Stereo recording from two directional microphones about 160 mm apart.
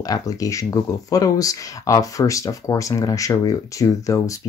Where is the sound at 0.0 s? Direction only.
20° left (ahead or behind).